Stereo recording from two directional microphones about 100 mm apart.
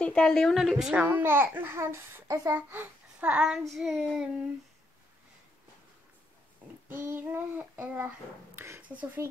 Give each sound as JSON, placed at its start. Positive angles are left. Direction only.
{"t": 0.0, "sound": "a woman's voice", "side_deg": 10}
{"t": 1.0, "sound": "speech", "side_deg": -20}
{"t": 2.7, "sound": "a child's voice", "side_deg": -20}
{"t": 6.9, "sound": "speech", "side_deg": -20}